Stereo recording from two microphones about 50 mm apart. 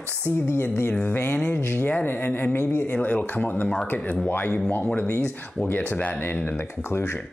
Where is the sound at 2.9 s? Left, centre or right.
Left.